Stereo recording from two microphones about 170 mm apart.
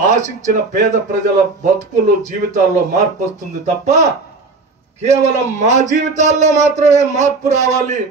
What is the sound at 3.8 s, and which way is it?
Speech, 40° right (ahead or behind).